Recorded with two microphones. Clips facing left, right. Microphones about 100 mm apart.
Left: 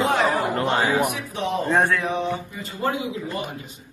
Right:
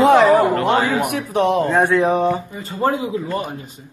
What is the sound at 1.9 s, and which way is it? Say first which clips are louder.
Speech: right 9 dB; 40° right (ahead or behind).